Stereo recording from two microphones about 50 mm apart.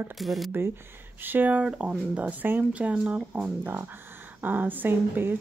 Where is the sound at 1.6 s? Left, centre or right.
Right.